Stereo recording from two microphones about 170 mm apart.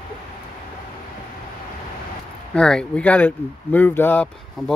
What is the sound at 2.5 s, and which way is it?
Speech, 5° left (ahead or behind).